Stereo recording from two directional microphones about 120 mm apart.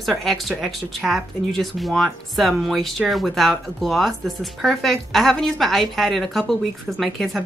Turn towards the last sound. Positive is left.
turn(degrees=0)  # may be behind; listen again after turning